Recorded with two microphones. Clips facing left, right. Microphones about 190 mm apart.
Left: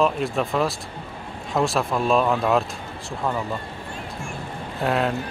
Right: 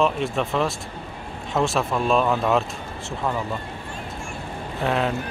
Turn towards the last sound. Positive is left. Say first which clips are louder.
# left 1 dB
turn(degrees=0)  # may be behind; listen again after turning